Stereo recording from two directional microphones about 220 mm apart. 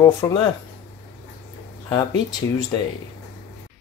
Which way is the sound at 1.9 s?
20° left (ahead or behind).